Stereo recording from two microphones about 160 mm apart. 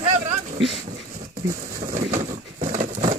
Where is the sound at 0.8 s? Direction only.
55° right (ahead or behind).